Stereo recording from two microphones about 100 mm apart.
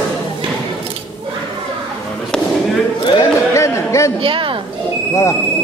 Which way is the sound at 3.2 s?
30° left (ahead or behind).